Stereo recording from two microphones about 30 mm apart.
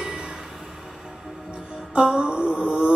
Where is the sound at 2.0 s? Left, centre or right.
Right.